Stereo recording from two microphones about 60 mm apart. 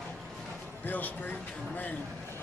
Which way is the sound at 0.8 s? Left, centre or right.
Left.